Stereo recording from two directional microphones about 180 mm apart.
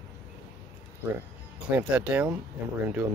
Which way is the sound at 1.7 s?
10° right (ahead or behind).